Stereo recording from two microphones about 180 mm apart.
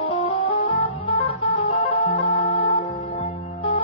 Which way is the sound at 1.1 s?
25° left (ahead or behind).